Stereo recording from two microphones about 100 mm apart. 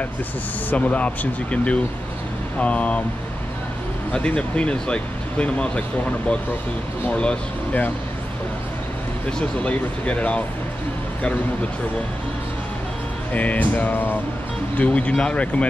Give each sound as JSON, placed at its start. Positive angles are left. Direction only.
{"t": 0.7, "sound": "speech", "side_deg": 15}
{"t": 4.1, "sound": "speech", "side_deg": 10}
{"t": 9.4, "sound": "speech", "side_deg": 10}
{"t": 13.3, "sound": "speech", "side_deg": 15}